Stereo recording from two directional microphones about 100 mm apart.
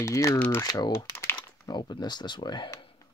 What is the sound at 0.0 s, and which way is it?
Speech, 30° left (ahead or behind).